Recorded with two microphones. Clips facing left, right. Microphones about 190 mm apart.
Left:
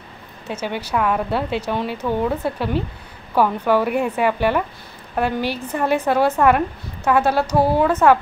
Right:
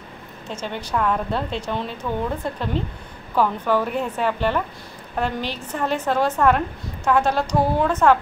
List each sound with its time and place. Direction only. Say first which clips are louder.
0.5 s a woman's voice: left 3 dB; 10° left (ahead or behind)